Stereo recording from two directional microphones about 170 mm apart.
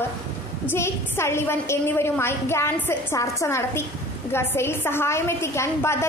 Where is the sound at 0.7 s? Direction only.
15° left (ahead or behind).